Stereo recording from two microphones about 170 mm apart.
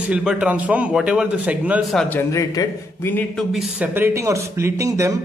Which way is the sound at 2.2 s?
20° left (ahead or behind).